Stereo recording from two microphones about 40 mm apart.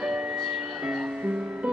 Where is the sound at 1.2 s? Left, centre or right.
Right.